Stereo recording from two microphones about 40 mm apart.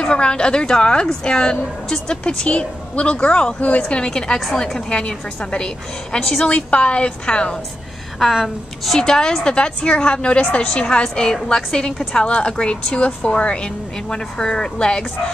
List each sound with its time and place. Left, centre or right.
0.0 s a woman's voice: left
6.1 s a woman's voice: centre
6.4 s a woman's voice: left
8.2 s a woman's voice: centre
8.8 s a woman's voice: centre